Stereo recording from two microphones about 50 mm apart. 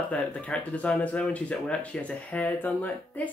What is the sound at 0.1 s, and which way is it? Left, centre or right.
Speech, left.